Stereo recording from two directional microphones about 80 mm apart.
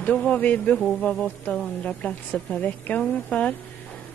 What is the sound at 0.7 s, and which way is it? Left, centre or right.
Speech, centre.